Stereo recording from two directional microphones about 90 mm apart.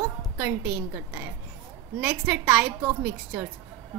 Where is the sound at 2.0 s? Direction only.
15° right (ahead or behind).